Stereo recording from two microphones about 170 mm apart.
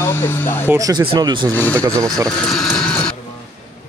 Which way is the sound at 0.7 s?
20° right (ahead or behind).